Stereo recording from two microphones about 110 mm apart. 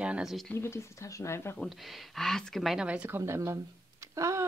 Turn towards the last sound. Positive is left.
turn(degrees=-30)  # may be behind; listen again after turning